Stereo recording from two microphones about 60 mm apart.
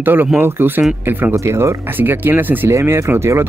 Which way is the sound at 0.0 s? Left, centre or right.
Right.